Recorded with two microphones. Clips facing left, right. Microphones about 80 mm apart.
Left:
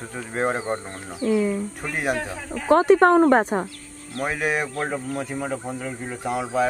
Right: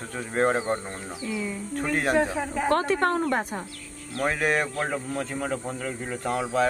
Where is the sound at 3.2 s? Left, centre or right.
Left.